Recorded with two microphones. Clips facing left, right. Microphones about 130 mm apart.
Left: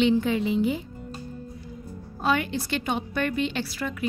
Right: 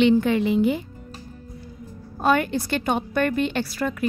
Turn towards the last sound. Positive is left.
turn(degrees=-45)  # may be behind; listen again after turning